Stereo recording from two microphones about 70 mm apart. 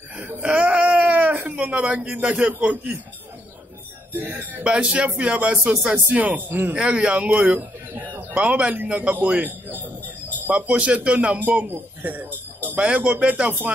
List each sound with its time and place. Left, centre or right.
0.2 s whimper: right
0.5 s a sound: centre
2.2 s speech: centre
4.1 s speech: right
6.8 s a man's voice: centre